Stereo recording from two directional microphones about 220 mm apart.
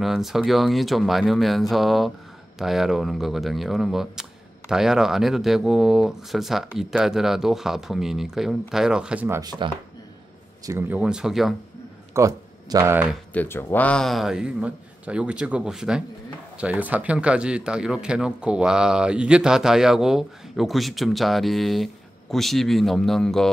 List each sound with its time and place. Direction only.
0.0 s speech: centre (ahead or behind)
9.4 s speech: 20° right (ahead or behind); by 11.5 s centre (ahead or behind)
12.1 s speech: 15° right (ahead or behind)
13.3 s speech: 10° left (ahead or behind)